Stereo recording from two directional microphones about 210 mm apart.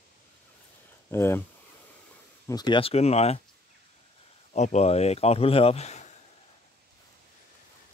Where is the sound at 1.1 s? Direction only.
10° left (ahead or behind).